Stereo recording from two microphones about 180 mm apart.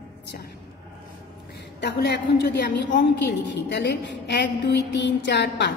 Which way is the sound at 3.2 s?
75° left (ahead or behind).